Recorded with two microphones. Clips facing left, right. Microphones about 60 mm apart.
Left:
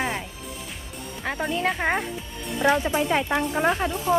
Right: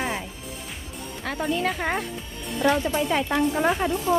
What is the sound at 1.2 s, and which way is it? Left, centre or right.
Speech, centre.